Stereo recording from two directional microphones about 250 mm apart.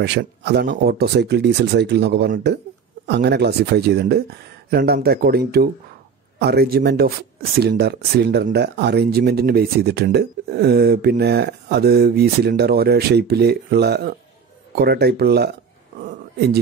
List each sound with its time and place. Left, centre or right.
0.0 s speech: right
6.4 s speech: right